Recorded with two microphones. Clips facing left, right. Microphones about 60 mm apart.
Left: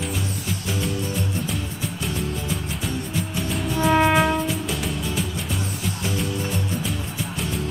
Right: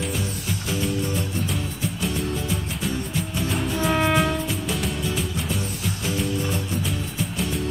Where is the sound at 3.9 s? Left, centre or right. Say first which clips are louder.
Left 4 dB; centre.